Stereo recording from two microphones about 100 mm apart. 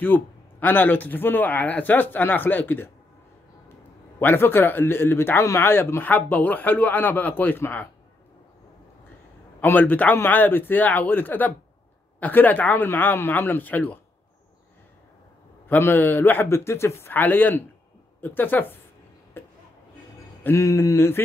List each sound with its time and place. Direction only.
0.0 s speech: 20° left (ahead or behind)
4.2 s speech: 20° left (ahead or behind)
9.6 s speech: 20° left (ahead or behind)
15.7 s speech: 20° left (ahead or behind)
19.4 s a sound: 25° left (ahead or behind)
20.5 s speech: 30° left (ahead or behind)